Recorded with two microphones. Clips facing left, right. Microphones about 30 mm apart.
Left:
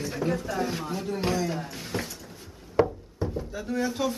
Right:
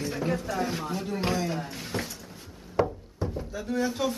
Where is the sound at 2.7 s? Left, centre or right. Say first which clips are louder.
Left 3 dB; centre.